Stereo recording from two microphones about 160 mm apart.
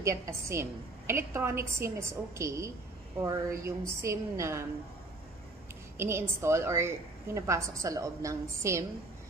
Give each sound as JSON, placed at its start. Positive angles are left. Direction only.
{"t": 0.0, "sound": "a woman's voice", "side_deg": -20}
{"t": 5.9, "sound": "a woman's voice", "side_deg": -15}